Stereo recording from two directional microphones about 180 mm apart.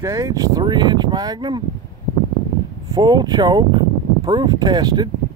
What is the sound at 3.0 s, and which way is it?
Speech, 25° right (ahead or behind).